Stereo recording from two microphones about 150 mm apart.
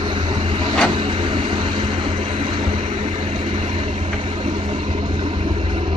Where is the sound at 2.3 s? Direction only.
50° right (ahead or behind).